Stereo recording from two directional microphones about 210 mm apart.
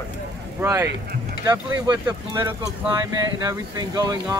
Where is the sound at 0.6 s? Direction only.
15° right (ahead or behind).